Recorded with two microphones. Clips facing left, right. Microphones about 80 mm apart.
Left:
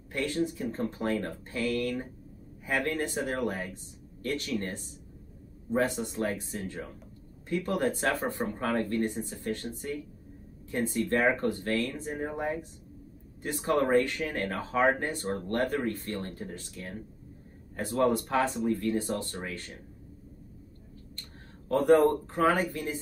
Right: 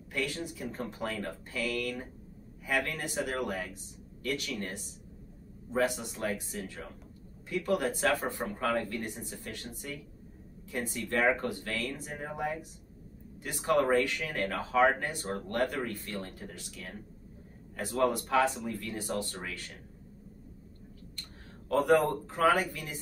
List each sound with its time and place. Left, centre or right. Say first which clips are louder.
0.1 s speech: left 5 dB; left
5.8 s speech: left 2 dB; left
21.6 s speech: left 4 dB; left